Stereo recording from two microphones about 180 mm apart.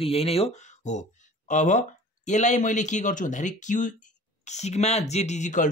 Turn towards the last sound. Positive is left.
turn(degrees=45)  # may be behind; listen again after turning